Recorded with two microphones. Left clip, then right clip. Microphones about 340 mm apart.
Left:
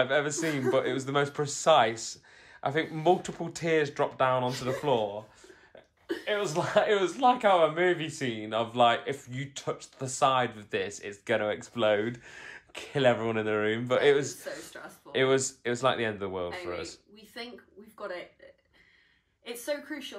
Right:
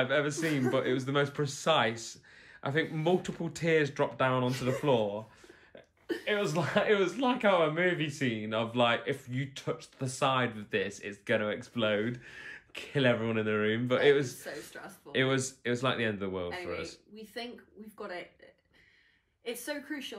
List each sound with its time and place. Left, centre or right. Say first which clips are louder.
0.0 s speech: left 2 dB; centre
6.2 s a woman's voice: left 2 dB; centre
19.4 s a woman's voice: left 3 dB; centre